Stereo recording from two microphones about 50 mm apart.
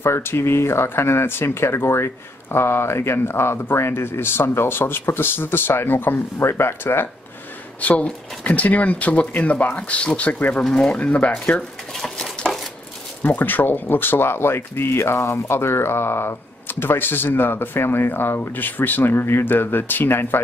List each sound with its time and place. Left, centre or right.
0.0 s speech: left
7.8 s speech: left
11.9 s a sound: centre
13.2 s speech: left
15.1 s speech: left
15.4 s speech: left